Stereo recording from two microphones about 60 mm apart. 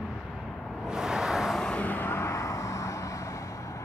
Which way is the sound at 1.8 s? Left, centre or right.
Left.